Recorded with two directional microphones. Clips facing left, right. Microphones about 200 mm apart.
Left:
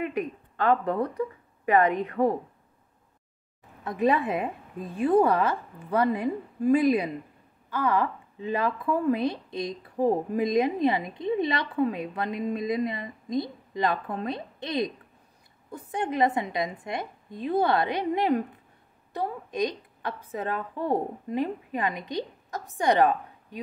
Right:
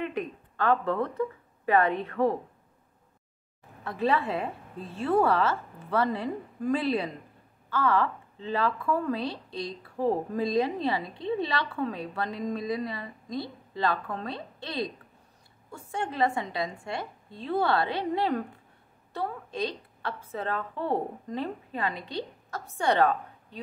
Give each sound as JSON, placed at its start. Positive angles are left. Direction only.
{"t": 0.6, "sound": "a woman's voice", "side_deg": 15}
{"t": 3.8, "sound": "a woman's voice", "side_deg": 20}